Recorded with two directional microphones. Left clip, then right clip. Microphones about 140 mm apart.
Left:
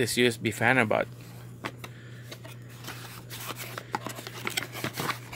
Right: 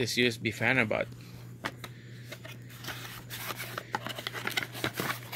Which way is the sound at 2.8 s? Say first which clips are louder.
Right 1 dB; 10° left (ahead or behind).